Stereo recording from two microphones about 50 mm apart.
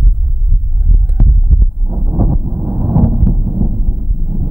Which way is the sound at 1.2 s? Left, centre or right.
Right.